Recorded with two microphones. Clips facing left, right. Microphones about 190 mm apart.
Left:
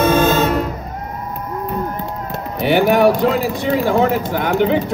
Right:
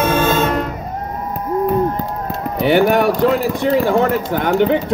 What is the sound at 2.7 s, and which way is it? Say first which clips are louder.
Run: right 1 dB; 55° right (ahead or behind).